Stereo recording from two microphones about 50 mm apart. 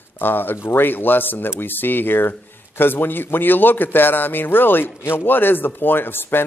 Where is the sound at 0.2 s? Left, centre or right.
Left.